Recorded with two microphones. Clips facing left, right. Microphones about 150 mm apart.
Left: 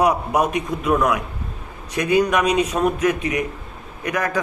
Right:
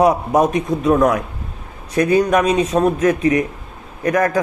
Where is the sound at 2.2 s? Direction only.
45° right (ahead or behind).